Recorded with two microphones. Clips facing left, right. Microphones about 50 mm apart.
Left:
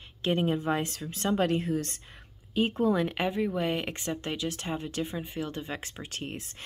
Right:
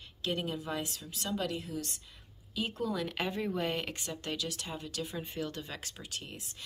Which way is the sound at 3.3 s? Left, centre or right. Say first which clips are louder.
Left 5 dB; centre.